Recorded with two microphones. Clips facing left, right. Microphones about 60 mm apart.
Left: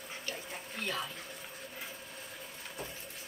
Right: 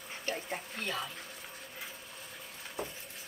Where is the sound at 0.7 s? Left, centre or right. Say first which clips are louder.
Left 2 dB; centre.